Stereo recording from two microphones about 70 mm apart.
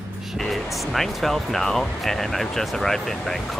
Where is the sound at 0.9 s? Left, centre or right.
Centre.